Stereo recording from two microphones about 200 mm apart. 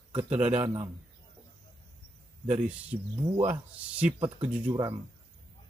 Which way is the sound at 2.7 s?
5° right (ahead or behind).